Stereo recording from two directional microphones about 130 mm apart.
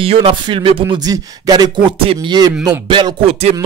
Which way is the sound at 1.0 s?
30° right (ahead or behind).